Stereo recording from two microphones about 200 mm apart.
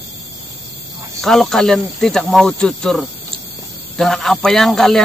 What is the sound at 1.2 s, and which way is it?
Speech, centre (ahead or behind).